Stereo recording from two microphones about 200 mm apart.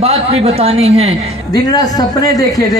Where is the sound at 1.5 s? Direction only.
20° left (ahead or behind).